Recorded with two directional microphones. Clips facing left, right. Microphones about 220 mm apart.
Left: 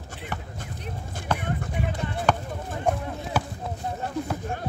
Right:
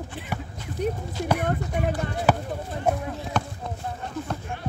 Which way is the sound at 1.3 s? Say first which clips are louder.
Right 4 dB; 50° right (ahead or behind).